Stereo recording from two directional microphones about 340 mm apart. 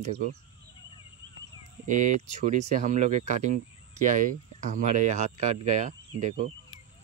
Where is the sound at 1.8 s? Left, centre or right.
Right.